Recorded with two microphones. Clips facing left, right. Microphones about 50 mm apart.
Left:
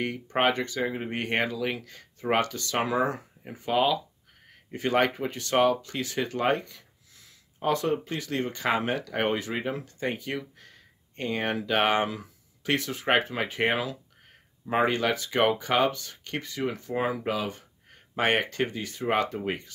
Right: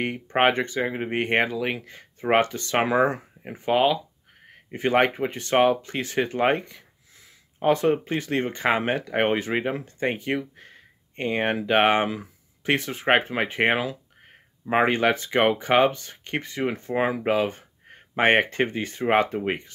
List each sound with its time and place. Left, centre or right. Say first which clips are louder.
0.0 s speech: right 4 dB; right